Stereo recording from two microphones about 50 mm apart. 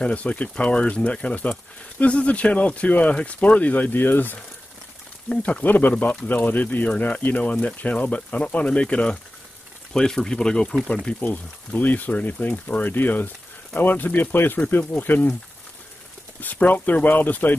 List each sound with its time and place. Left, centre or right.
0.0 s speech: left
5.3 s speech: left
11.7 s speech: left
16.3 s speech: left